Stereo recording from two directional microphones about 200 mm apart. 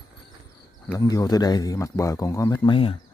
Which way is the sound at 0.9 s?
15° left (ahead or behind).